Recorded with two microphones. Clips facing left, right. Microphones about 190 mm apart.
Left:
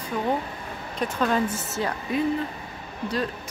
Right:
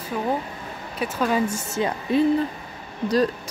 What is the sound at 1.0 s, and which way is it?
Speech, 10° right (ahead or behind).